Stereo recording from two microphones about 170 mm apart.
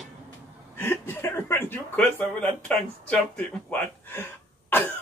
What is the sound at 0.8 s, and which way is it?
Speech, 15° left (ahead or behind).